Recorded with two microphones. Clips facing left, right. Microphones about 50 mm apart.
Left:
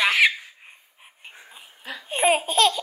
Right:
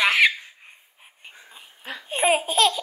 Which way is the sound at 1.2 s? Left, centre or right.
Centre.